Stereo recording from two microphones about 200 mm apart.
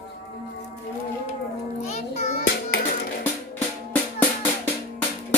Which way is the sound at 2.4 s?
55° left (ahead or behind).